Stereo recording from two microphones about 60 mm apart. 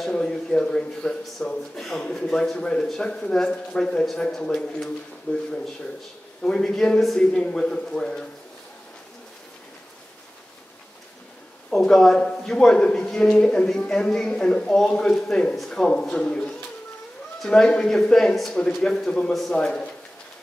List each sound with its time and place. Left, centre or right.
0.0 s a man's voice: centre
6.4 s a man's voice: centre
11.8 s a man's voice: centre